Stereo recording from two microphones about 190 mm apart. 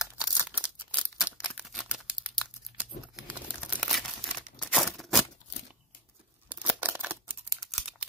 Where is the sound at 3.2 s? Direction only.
5° right (ahead or behind).